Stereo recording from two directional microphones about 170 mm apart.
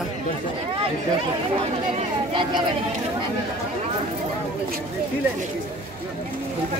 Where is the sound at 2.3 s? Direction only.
30° right (ahead or behind).